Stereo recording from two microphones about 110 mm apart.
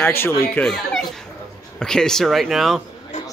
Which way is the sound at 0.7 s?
Centre (ahead or behind).